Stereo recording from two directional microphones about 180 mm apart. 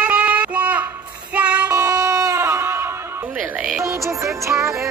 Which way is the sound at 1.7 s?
20° right (ahead or behind).